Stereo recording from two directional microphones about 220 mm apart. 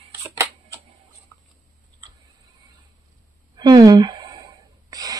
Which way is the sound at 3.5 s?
20° right (ahead or behind).